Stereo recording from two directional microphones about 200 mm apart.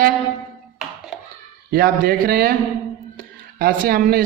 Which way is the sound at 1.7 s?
45° right (ahead or behind).